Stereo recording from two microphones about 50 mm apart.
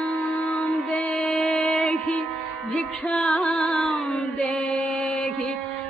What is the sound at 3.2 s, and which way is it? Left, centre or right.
Music, centre.